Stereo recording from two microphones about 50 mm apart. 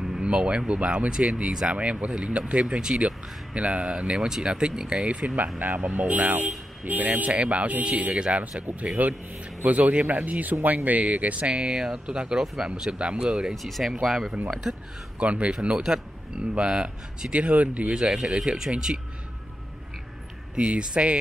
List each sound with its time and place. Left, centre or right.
0.2 s speech: centre
1.7 s speech: right
11.5 s speech: centre
13.6 s speech: centre
15.1 s speech: right
17.3 s speech: right
17.9 s speech: centre
20.5 s speech: right